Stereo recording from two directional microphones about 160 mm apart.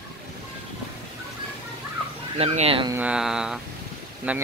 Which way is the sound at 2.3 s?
40° right (ahead or behind).